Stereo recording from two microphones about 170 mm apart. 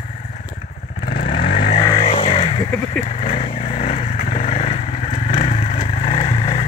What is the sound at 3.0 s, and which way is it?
Vehicle, 40° left (ahead or behind).